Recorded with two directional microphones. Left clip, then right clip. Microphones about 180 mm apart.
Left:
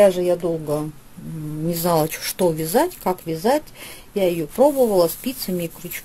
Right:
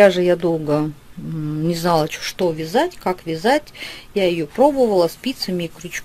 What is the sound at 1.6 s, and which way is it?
Speech, 5° right (ahead or behind).